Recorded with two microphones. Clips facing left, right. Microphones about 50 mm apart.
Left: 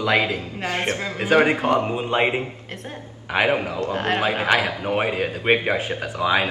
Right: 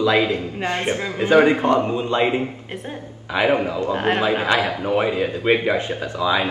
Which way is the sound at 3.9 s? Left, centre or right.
Centre.